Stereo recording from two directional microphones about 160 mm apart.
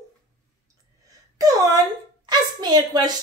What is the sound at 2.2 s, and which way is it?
Speech, 25° right (ahead or behind).